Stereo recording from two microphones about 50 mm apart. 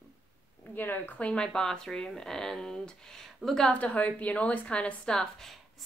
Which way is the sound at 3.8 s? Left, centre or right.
Left.